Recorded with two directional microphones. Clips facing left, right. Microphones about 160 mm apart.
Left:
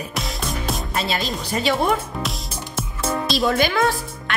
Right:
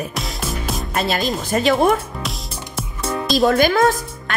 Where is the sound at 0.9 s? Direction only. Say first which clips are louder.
Right 6 dB; 55° right (ahead or behind).